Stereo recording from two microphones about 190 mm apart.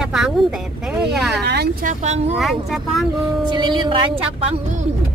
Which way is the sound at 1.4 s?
60° right (ahead or behind).